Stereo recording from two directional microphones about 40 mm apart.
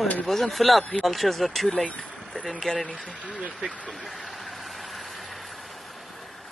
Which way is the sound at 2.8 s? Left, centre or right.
Left.